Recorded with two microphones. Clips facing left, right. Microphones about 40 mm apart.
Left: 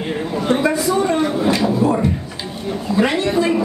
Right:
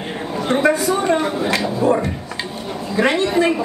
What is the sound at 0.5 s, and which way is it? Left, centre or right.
Speech, right.